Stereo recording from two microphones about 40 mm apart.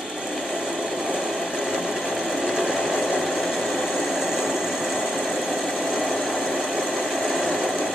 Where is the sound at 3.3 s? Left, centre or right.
Centre.